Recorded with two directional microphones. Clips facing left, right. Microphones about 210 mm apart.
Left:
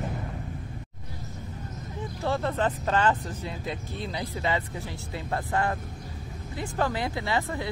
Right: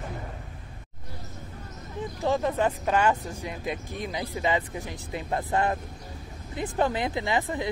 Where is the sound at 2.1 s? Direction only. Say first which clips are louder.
Right 2 dB; 15° right (ahead or behind).